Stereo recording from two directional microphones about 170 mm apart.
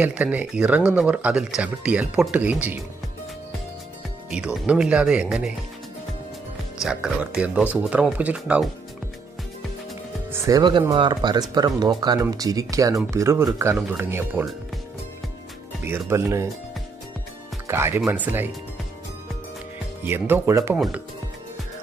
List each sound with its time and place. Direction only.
0.0 s speech: 10° right (ahead or behind)
4.3 s speech: 5° right (ahead or behind)
6.8 s speech: 5° right (ahead or behind)
10.3 s speech: 20° right (ahead or behind)
15.8 s speech: 15° right (ahead or behind)
17.6 s speech: 15° right (ahead or behind)
20.0 s speech: 10° right (ahead or behind)